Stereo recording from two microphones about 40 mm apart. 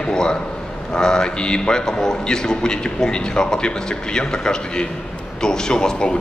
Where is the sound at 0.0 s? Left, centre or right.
Centre.